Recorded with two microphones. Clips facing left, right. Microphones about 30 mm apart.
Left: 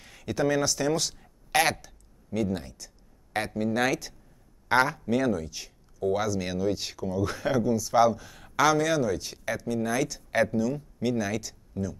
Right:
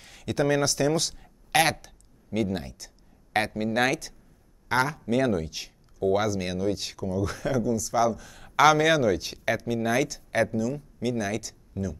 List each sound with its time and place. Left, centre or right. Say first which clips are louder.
0.3 s speech: right 1 dB; centre
1.2 s a sound: right 1 dB; centre
1.8 s speech: right 1 dB; centre
4.6 s a man's voice: left 2 dB; centre
5.1 s speech: right 5 dB; right
6.1 s speech: right 2 dB; centre
8.3 s a sound: right 1 dB; centre
8.5 s speech: right 4 dB; centre